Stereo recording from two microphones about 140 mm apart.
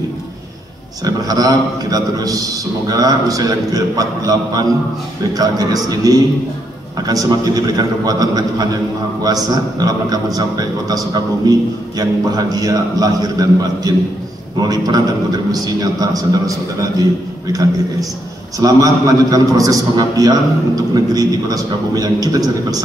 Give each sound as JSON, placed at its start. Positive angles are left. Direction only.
{"t": 1.0, "sound": "a man's voice", "side_deg": -25}
{"t": 18.6, "sound": "a man's voice", "side_deg": -25}